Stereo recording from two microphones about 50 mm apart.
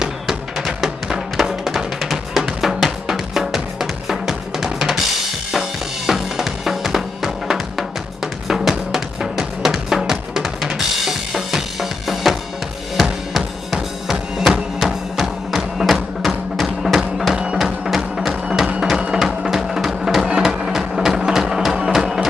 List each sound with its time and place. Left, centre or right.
0.0 s music: centre
1.4 s drum: centre
13.7 s drum: centre
14.1 s music: centre